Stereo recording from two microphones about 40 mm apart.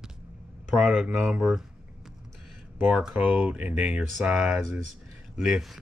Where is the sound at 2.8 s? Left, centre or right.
Right.